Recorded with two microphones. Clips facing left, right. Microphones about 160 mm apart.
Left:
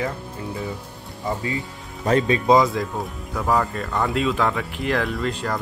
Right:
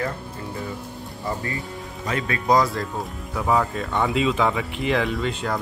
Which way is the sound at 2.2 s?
25° left (ahead or behind).